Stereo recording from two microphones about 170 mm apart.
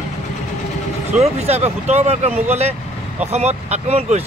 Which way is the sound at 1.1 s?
40° right (ahead or behind).